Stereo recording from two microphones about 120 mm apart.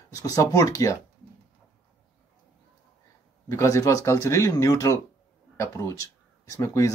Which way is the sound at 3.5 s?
25° left (ahead or behind).